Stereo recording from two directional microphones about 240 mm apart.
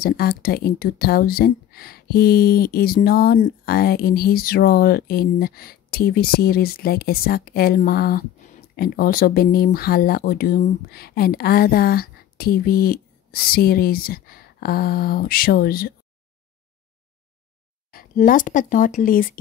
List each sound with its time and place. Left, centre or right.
0.0 s speech: left
17.9 s speech: left